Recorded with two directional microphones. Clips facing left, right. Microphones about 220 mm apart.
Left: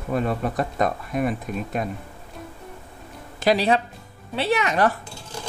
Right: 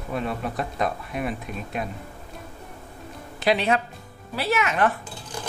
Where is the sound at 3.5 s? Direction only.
35° left (ahead or behind).